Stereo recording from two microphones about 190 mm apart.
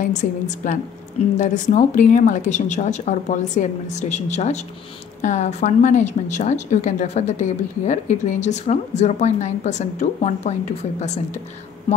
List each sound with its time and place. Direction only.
0.0 s a woman's voice: 40° left (ahead or behind)